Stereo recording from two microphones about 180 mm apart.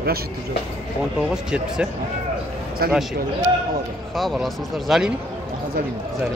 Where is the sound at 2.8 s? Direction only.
60° right (ahead or behind).